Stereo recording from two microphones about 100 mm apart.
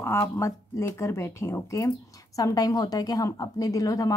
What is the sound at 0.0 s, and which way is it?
Speech, 30° left (ahead or behind).